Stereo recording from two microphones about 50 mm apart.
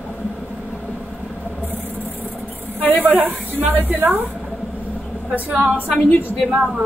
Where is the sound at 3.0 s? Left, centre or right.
Right.